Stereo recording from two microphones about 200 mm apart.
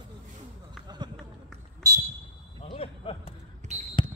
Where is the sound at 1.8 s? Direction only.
20° right (ahead or behind).